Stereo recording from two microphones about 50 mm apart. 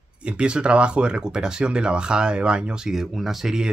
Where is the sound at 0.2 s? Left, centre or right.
Right.